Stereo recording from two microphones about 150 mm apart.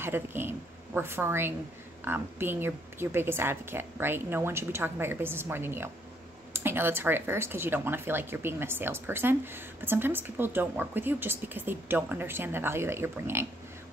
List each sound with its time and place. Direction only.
0.0 s speech: 15° right (ahead or behind)